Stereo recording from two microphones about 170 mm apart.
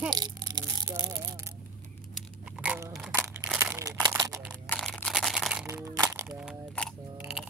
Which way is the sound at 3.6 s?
20° right (ahead or behind).